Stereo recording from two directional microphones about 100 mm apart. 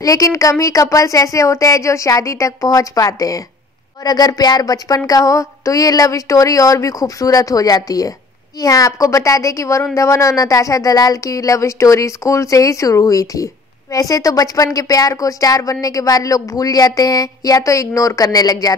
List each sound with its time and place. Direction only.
0.0 s speech: 35° left (ahead or behind)